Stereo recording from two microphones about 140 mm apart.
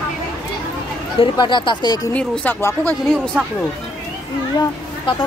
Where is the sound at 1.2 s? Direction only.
35° left (ahead or behind).